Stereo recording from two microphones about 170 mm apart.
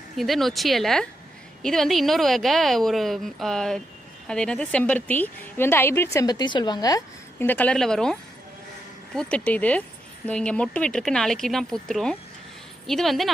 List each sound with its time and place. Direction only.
0.1 s a woman's voice: centre (ahead or behind)